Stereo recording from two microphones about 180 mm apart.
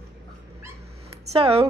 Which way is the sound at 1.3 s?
35° right (ahead or behind).